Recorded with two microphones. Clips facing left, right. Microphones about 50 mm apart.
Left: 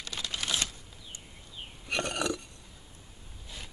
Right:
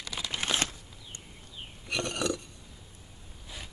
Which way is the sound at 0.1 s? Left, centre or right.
Right.